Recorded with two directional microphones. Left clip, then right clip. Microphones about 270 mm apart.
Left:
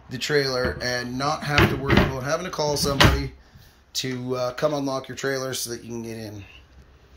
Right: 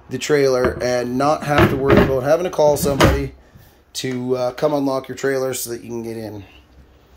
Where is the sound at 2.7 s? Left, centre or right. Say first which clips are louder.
Right 4 dB; right.